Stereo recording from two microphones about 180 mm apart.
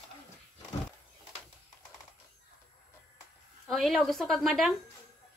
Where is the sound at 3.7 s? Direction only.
Centre (ahead or behind).